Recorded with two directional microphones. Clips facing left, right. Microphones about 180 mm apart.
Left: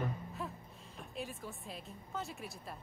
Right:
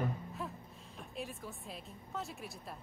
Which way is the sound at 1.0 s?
Centre (ahead or behind).